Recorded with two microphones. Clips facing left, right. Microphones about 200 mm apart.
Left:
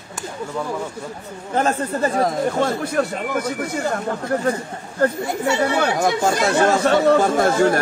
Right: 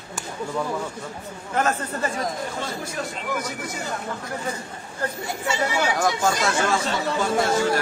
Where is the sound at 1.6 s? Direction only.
35° left (ahead or behind).